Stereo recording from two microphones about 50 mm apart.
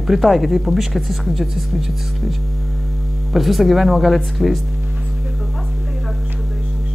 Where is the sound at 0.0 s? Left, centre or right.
Centre.